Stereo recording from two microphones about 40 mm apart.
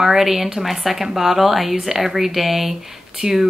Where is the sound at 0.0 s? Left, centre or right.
Centre.